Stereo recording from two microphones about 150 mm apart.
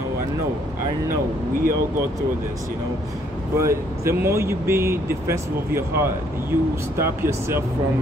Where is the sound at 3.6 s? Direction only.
20° right (ahead or behind).